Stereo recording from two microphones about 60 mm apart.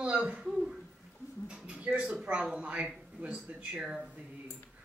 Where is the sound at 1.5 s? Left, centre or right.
Centre.